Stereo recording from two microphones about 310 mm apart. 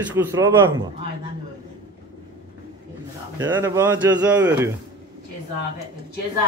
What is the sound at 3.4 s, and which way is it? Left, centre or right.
Speech, centre.